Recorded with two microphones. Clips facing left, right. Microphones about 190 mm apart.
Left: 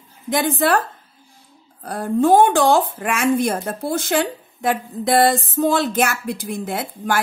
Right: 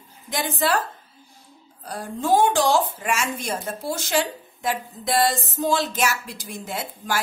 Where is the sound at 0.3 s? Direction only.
55° left (ahead or behind).